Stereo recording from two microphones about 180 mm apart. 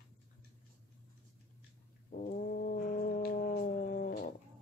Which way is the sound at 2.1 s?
45° left (ahead or behind).